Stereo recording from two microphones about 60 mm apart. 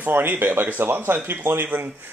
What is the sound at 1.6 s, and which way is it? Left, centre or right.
Speech, right.